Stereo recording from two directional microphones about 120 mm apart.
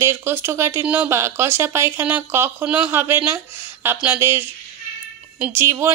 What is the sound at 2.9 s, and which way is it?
Speech, 20° right (ahead or behind).